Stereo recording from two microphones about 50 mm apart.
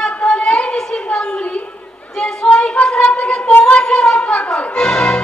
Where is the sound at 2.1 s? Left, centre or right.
Centre.